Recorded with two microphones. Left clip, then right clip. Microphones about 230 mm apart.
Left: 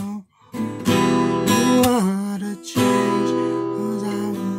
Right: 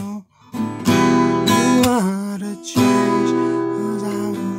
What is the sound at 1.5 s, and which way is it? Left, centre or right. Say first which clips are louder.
Music: left 1 dB; centre.